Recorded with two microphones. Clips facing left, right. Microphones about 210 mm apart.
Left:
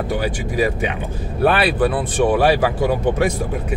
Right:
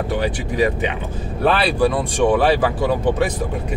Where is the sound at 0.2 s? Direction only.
10° left (ahead or behind).